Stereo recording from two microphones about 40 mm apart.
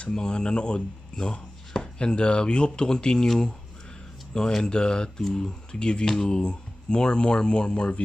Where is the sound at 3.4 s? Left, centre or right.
Centre.